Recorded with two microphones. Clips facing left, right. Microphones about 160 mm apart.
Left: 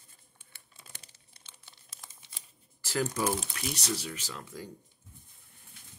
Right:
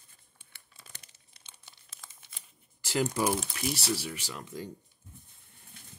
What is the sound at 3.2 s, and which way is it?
Speech, 10° right (ahead or behind).